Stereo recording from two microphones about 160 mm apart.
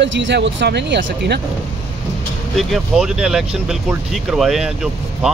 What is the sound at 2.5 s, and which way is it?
Speech, centre (ahead or behind).